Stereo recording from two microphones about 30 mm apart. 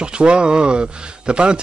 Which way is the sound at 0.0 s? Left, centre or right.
Right.